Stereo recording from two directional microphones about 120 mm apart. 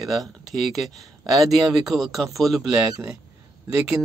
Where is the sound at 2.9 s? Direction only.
30° right (ahead or behind).